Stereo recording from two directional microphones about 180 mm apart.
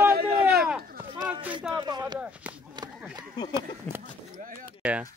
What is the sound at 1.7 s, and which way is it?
Speech, 20° right (ahead or behind).